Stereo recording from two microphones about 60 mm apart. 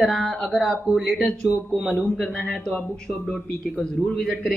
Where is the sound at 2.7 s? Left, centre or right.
Centre.